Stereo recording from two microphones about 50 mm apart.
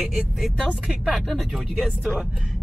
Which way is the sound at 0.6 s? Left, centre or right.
Right.